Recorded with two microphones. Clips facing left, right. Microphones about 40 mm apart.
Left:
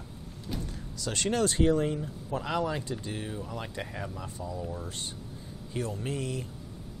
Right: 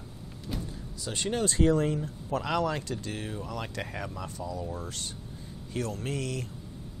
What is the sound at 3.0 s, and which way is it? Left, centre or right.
Speech, right.